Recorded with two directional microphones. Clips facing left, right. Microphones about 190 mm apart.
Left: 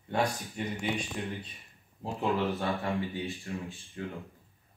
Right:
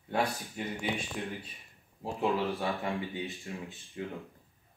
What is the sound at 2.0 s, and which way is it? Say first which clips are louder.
Speech: even; 5° right (ahead or behind).